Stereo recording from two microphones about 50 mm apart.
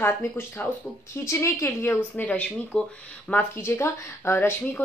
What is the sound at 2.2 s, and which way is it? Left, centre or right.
Speech, left.